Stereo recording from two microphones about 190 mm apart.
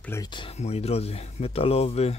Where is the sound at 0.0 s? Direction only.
15° left (ahead or behind).